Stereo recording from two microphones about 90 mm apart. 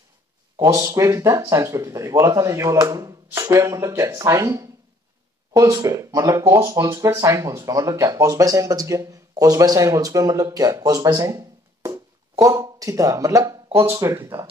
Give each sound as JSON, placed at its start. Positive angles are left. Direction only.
{"t": 0.6, "sound": "speech", "side_deg": -35}
{"t": 11.2, "sound": "a sound", "side_deg": -35}
{"t": 13.9, "sound": "speech", "side_deg": -35}